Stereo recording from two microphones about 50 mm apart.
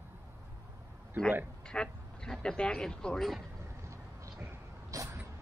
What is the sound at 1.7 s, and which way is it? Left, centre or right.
Speech, centre.